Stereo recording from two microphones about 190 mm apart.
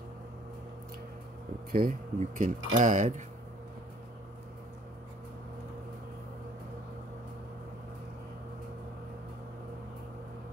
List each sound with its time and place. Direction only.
1.7 s speech: 45° right (ahead or behind)